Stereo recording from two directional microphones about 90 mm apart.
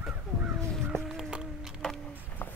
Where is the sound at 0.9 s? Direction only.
5° left (ahead or behind).